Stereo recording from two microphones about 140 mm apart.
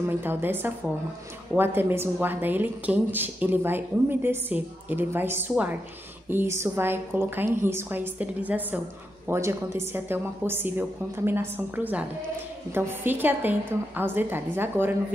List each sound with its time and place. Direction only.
0.2 s speech: 15° right (ahead or behind)